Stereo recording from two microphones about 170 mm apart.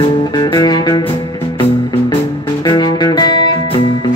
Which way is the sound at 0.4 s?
25° left (ahead or behind).